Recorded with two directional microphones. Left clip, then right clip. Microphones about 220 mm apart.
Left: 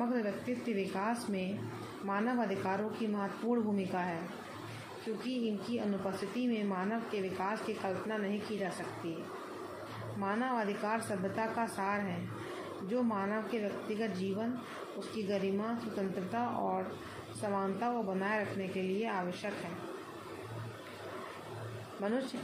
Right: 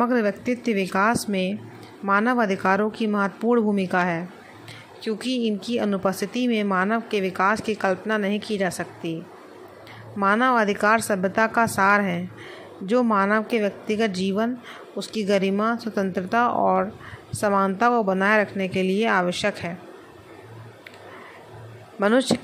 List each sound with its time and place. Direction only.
0.0 s a woman's voice: 40° right (ahead or behind)
5.2 s a woman's voice: 40° right (ahead or behind)
10.2 s a woman's voice: 40° right (ahead or behind)